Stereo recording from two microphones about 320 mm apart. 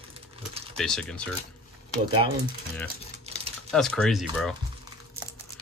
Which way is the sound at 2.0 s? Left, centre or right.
Centre.